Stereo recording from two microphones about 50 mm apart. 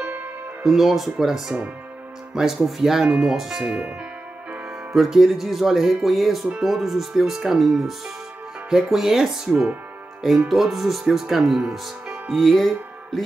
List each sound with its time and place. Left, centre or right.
0.1 s music: right
0.7 s speech: centre
4.9 s speech: centre
12.3 s speech: centre